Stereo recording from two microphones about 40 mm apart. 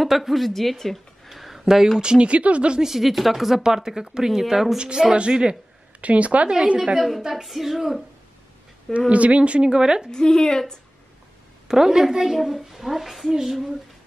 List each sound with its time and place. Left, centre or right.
0.0 s a woman's voice: centre
0.5 s speech: centre
2.0 s a woman's voice: right
2.8 s speech: centre
4.7 s a woman's voice: centre
5.9 s speech: right
7.0 s a woman's voice: centre
9.1 s a woman's voice: right; by 10.1 s centre
10.1 s speech: centre
11.6 s a woman's voice: centre